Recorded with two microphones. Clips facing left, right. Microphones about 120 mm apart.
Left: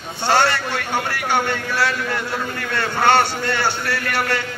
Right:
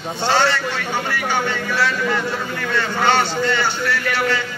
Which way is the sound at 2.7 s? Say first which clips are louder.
Left 1 dB; 55° left (ahead or behind).